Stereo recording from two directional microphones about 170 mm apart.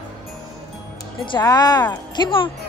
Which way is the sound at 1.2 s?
25° left (ahead or behind).